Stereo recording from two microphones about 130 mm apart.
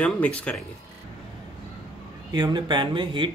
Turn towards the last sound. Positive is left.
turn(degrees=-40)  # may be behind; listen again after turning